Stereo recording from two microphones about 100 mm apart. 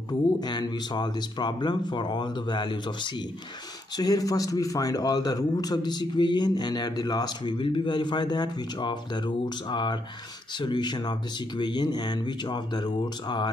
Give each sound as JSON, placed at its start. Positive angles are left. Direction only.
{"t": 0.4, "sound": "speech", "side_deg": 45}
{"t": 3.9, "sound": "speech", "side_deg": 40}